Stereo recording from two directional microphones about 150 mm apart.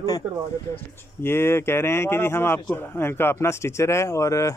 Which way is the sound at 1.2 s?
15° left (ahead or behind).